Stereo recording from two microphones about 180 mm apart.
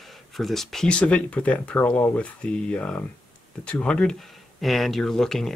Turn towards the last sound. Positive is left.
turn(degrees=5)  # may be behind; listen again after turning